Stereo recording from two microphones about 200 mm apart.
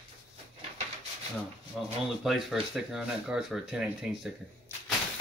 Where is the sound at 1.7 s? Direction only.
Centre (ahead or behind).